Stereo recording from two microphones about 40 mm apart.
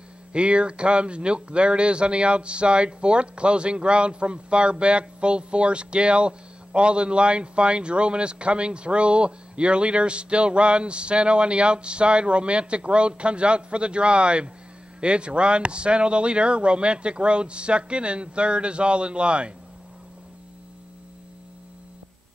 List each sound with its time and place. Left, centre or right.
0.3 s speech: right